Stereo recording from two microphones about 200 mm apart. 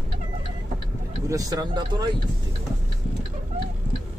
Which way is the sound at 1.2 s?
15° right (ahead or behind).